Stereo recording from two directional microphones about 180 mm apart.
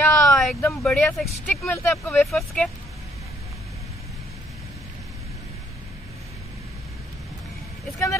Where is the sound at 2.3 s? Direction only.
Centre (ahead or behind).